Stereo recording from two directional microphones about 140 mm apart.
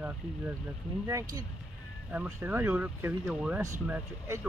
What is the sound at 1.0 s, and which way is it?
Speech, 25° right (ahead or behind).